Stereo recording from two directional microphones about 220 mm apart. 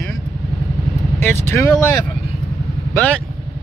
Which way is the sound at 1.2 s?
10° left (ahead or behind).